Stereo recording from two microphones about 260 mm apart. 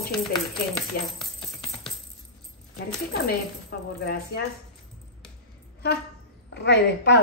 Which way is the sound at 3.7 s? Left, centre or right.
Left.